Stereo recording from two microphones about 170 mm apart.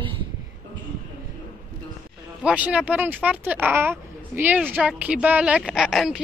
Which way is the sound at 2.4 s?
5° right (ahead or behind).